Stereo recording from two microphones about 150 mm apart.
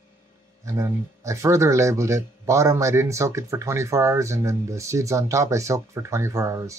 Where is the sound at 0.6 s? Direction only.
20° right (ahead or behind).